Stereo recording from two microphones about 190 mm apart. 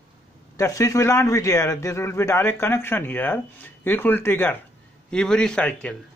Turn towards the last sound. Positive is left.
turn(degrees=5)  # may be behind; listen again after turning